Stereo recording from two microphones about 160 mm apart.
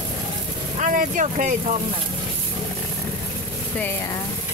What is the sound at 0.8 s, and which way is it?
Speech, 55° right (ahead or behind).